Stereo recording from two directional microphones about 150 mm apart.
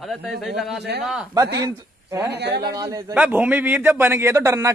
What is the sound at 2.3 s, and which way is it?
Speech, 90° right.